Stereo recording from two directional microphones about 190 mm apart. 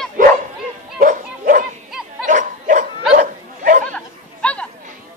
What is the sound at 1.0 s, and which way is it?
Dog, 45° right (ahead or behind).